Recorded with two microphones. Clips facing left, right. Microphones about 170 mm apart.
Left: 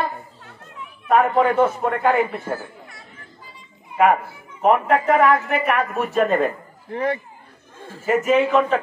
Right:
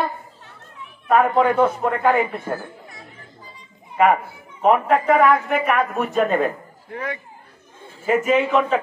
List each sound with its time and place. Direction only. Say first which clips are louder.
1.0 s a man's voice: even; centre (ahead or behind)
3.9 s a man's voice: even; centre (ahead or behind)
6.9 s speech: left 6 dB; 35° left (ahead or behind)
8.0 s a man's voice: left 1 dB; 5° left (ahead or behind)